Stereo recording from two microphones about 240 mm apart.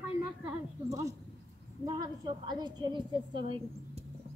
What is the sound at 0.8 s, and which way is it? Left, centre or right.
A woman's voice, centre.